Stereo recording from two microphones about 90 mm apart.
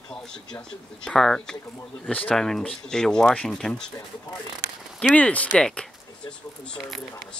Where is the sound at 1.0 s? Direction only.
5° left (ahead or behind).